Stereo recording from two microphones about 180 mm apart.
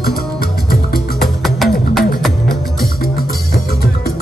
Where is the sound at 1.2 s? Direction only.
Centre (ahead or behind).